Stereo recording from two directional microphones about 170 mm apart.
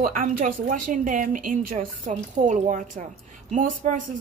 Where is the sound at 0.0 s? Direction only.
50° right (ahead or behind).